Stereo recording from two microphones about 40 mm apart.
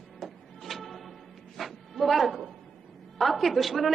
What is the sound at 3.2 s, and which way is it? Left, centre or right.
Speech, centre.